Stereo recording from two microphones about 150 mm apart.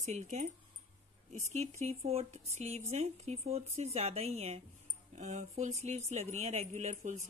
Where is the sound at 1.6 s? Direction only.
45° right (ahead or behind).